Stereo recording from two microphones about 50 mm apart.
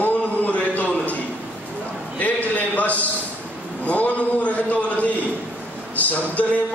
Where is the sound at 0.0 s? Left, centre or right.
Left.